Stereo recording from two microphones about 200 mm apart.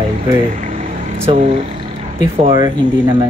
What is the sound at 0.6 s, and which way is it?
Vehicle, 40° right (ahead or behind).